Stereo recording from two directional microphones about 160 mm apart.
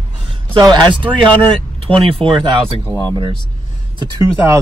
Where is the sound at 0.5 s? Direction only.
25° right (ahead or behind).